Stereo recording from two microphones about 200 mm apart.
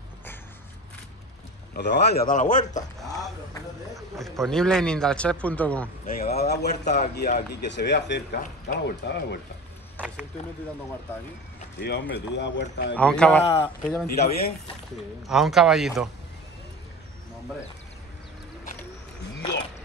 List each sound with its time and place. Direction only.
1.8 s a man's voice: 55° left (ahead or behind); by 2.6 s 40° left (ahead or behind)
3.9 s a man's voice: centre (ahead or behind)
6.0 s a sound: 50° left (ahead or behind)
7.2 s speech: 50° left (ahead or behind)
9.9 s a sound: 5° right (ahead or behind)
11.8 s speech: 55° left (ahead or behind)
12.9 s a man's voice: 5° left (ahead or behind)
14.0 s a man's voice: 50° left (ahead or behind)
15.2 s a man's voice: centre (ahead or behind)